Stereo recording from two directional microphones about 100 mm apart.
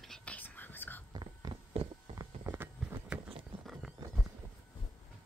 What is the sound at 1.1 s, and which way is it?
Whispering, 45° right (ahead or behind).